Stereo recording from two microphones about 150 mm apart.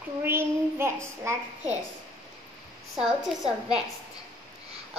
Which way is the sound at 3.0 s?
5° right (ahead or behind).